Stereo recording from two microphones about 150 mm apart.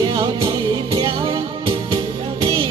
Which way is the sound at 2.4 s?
35° right (ahead or behind).